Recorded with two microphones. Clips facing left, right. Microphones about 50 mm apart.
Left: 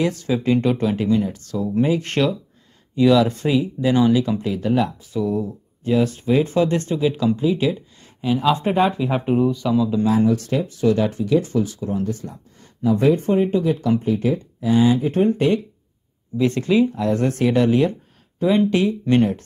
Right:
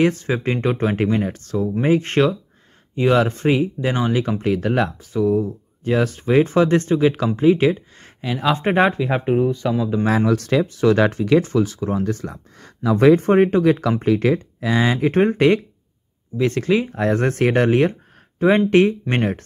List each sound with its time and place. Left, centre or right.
0.0 s speech: right
5.1 s speech: right
6.1 s speech: right
9.1 s speech: centre
9.5 s speech: right
10.0 s speech: right
11.4 s speech: right
11.9 s speech: right
15.0 s speech: right
16.3 s speech: right